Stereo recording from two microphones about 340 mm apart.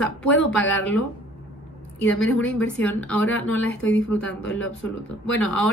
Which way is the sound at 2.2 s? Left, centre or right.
Centre.